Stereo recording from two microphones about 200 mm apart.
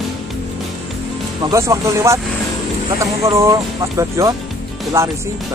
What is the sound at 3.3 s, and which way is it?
Speech, 15° right (ahead or behind).